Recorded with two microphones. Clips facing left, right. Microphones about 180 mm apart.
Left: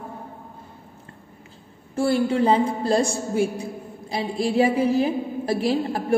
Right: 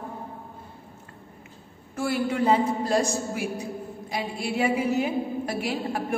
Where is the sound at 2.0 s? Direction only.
30° left (ahead or behind).